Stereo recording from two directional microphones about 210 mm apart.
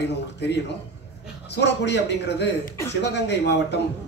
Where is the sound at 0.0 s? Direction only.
55° left (ahead or behind).